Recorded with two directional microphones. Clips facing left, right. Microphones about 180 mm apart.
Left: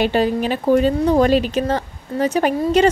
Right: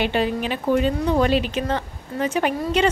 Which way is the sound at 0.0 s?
40° left (ahead or behind).